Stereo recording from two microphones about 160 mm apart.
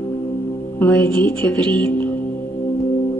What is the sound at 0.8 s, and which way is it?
Music, 15° left (ahead or behind).